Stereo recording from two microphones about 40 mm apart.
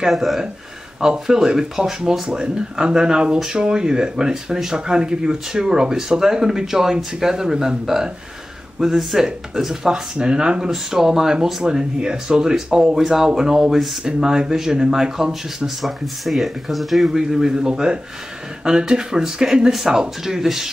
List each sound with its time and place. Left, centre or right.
0.1 s speech: centre
1.0 s speech: centre
2.2 s a man's voice: right
10.1 s a man's voice: right; by 17.1 s centre
17.1 s a man's voice: centre